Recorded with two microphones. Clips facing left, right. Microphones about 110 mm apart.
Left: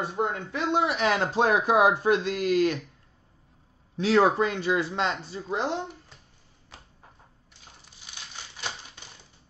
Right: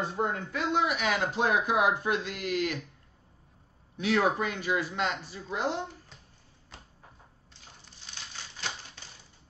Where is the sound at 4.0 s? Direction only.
35° left (ahead or behind).